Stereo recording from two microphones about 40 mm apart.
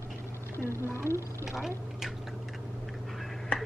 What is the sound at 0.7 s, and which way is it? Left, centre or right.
Speech, left.